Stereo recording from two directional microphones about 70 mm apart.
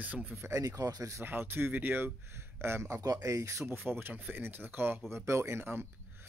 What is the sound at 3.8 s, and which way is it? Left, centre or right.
Speech, right.